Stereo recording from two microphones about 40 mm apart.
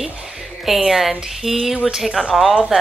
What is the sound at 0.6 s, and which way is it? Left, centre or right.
A woman's voice, centre.